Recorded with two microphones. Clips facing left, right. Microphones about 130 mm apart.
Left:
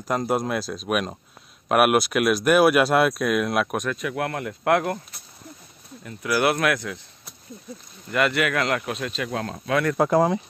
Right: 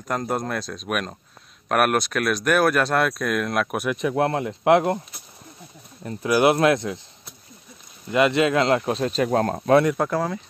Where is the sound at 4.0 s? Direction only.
30° right (ahead or behind).